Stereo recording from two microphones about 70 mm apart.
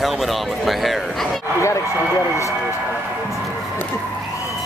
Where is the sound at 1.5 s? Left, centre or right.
Left.